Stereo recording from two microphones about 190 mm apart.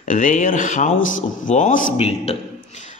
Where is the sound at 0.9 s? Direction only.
90° left.